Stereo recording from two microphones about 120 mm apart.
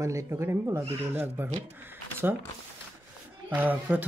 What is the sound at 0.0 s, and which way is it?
Speech, 25° right (ahead or behind).